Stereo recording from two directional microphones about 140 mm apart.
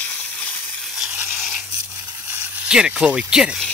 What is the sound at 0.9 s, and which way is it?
Toothbrush, 5° right (ahead or behind).